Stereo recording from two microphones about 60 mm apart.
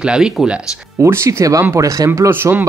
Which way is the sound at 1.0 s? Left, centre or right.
Right.